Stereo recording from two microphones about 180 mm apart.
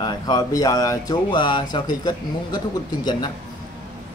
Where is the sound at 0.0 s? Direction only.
20° left (ahead or behind).